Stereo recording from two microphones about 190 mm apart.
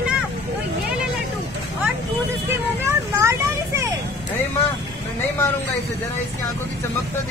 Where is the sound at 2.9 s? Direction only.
15° right (ahead or behind).